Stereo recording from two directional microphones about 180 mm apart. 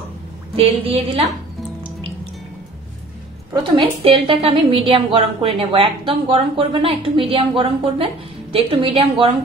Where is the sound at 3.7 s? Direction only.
30° right (ahead or behind).